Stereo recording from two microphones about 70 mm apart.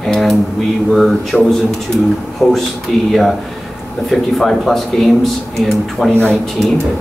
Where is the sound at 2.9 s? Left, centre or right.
Centre.